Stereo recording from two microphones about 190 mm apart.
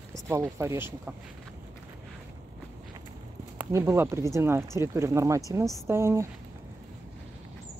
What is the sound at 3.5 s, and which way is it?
Speech, 15° right (ahead or behind).